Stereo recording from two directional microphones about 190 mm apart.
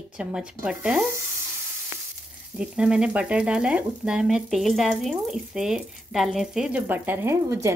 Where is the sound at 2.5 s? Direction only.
5° right (ahead or behind).